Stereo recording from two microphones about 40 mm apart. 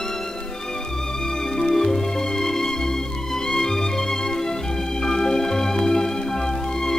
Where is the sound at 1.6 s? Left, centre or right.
Centre.